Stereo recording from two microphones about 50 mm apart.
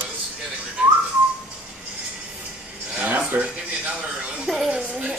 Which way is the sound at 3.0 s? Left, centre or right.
Right.